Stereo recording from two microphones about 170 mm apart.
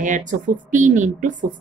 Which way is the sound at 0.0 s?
50° right (ahead or behind).